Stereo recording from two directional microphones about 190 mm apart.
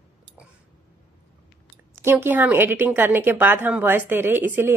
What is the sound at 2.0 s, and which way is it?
Speech, 10° right (ahead or behind).